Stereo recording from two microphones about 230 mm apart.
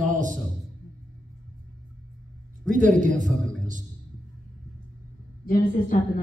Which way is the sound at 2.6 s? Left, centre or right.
Right.